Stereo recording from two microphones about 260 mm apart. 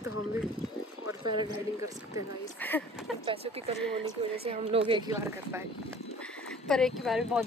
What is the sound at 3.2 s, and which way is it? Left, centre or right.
A woman's voice, right.